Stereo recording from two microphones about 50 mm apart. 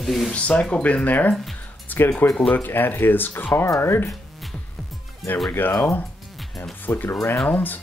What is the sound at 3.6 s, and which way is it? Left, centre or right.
Speech, left.